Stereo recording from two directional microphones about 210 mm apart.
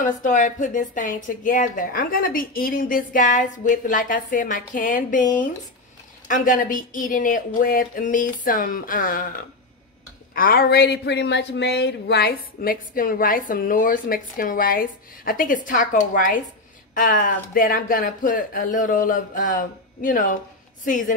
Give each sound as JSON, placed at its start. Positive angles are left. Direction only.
{"t": 0.2, "sound": "a woman's voice", "side_deg": 40}